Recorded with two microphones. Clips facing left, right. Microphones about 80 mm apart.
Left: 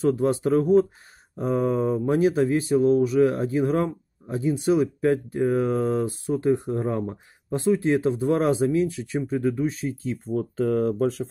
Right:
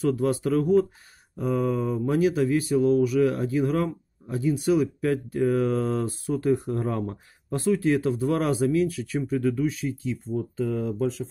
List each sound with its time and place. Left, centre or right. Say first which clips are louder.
0.0 s speech: left 2 dB; left
10.2 s speech: left 5 dB; left